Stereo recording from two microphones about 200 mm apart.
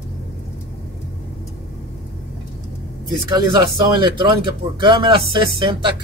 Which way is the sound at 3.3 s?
20° right (ahead or behind).